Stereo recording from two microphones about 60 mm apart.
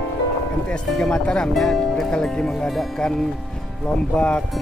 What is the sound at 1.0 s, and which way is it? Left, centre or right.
Speech, centre.